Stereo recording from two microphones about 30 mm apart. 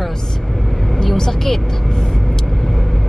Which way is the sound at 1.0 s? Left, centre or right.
Centre.